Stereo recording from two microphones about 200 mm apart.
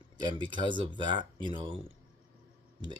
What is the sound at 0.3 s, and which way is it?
Speech, 25° right (ahead or behind).